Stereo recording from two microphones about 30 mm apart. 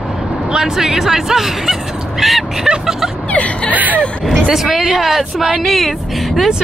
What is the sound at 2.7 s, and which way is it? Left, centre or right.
Speech, right.